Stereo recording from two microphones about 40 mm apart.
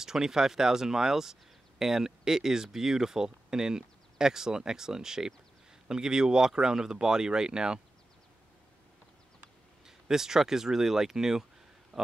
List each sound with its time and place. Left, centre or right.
0.0 s speech: centre
9.8 s speech: centre
11.9 s a sound: centre